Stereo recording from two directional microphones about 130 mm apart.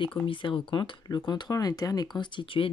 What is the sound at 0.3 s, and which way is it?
Speech, 40° left (ahead or behind).